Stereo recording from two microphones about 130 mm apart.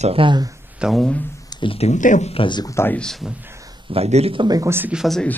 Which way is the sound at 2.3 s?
40° left (ahead or behind).